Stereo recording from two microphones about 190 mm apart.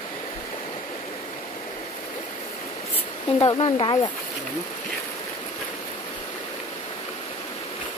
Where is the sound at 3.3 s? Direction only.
20° left (ahead or behind).